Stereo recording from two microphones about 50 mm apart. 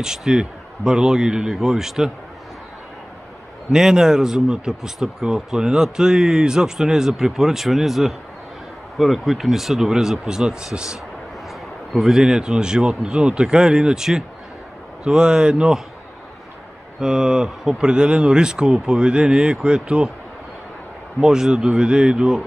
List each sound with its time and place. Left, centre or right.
0.0 s speech: centre
3.7 s speech: centre
11.9 s speech: centre
12.2 s speech: centre
17.0 s speech: centre
21.2 s speech: centre